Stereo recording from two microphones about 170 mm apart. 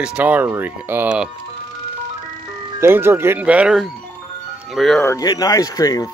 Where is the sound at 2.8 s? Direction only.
15° right (ahead or behind); by 5.0 s centre (ahead or behind).